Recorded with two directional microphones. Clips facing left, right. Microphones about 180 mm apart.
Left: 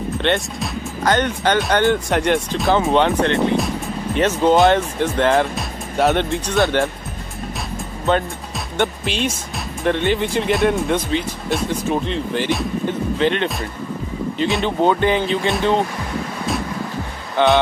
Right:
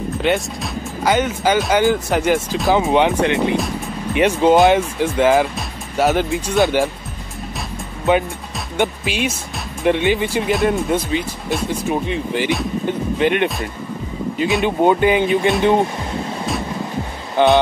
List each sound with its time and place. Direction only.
0.2 s speech: 5° right (ahead or behind)
2.9 s speech: 10° right (ahead or behind)
9.0 s speech: 10° right (ahead or behind)